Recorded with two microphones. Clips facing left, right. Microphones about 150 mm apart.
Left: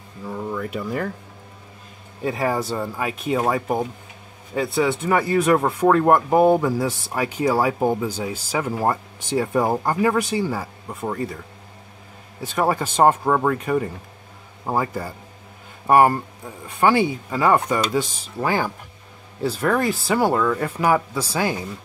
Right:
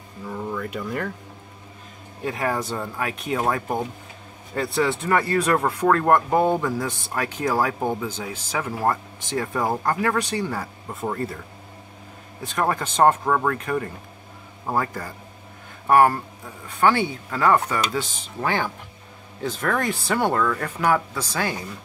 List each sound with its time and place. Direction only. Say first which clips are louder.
0.3 s speech: left 2 dB; 5° left (ahead or behind)
2.3 s speech: left 2 dB; 5° left (ahead or behind)
12.5 s speech: left 2 dB; 10° left (ahead or behind)